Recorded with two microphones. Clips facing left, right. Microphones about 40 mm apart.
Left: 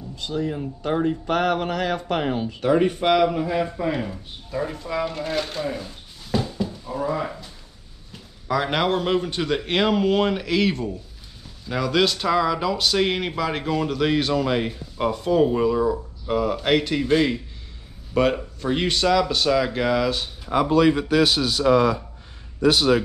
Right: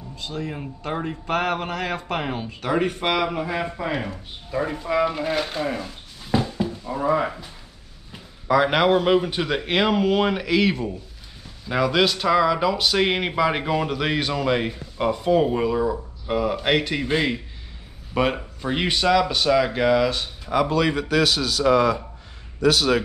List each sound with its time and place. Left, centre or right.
0.4 s speech: right
1.0 s speech: right
5.7 s a sound: centre
6.9 s speech: right; by 20.2 s centre
20.7 s speech: right